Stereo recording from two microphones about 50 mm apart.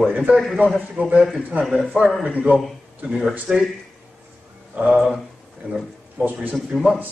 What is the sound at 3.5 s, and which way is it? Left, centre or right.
Speech, centre.